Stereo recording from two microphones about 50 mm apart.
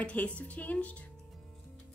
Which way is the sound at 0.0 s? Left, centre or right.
Left.